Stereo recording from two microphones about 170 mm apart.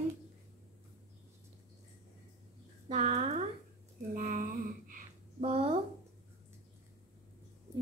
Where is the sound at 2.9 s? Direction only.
40° right (ahead or behind).